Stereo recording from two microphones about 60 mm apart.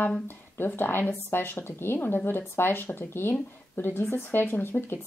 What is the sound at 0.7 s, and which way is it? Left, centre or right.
Speech, left.